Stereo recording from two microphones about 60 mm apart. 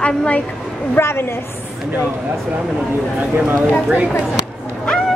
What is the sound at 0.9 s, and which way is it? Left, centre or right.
Speech, left.